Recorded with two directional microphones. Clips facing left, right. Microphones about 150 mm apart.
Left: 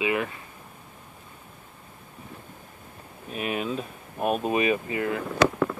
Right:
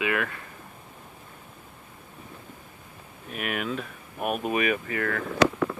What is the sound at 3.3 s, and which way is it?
Speech, 30° left (ahead or behind).